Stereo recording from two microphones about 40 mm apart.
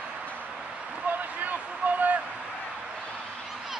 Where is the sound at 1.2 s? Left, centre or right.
Right.